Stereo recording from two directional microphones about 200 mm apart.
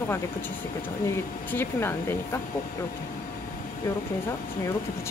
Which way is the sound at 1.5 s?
10° left (ahead or behind).